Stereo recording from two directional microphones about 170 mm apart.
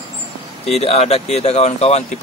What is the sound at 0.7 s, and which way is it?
Speech, 35° left (ahead or behind).